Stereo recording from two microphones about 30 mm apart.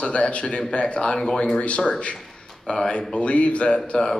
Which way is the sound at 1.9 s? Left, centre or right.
Left.